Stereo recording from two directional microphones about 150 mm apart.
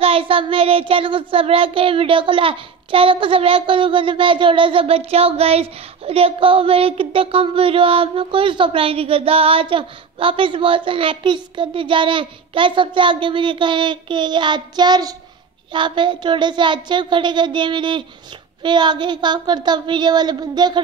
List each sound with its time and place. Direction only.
0.0 s child singing: 40° right (ahead or behind)
18.6 s speech: 30° right (ahead or behind)